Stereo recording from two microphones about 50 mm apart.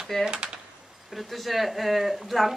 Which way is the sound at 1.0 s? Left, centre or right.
Centre.